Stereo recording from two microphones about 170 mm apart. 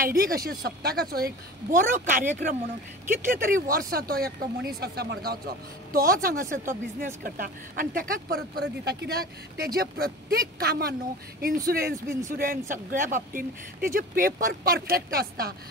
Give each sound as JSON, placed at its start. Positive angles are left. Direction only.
{"t": 0.0, "sound": "speech", "side_deg": -60}
{"t": 5.9, "sound": "speech", "side_deg": -60}